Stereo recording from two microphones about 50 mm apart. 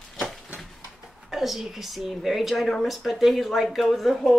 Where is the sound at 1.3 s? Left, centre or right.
Centre.